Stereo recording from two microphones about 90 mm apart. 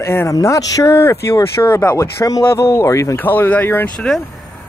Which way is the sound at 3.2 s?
20° left (ahead or behind).